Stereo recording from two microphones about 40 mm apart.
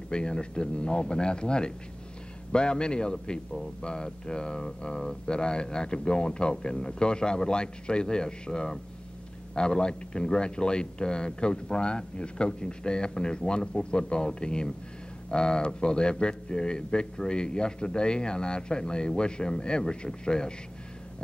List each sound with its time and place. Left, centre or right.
0.1 s speech: left